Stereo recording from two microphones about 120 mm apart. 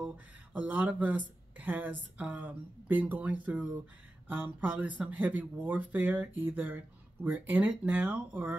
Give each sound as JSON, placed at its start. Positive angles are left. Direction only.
{"t": 0.0, "sound": "speech", "side_deg": -15}